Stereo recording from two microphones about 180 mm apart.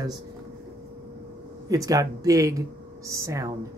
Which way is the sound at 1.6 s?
20° right (ahead or behind).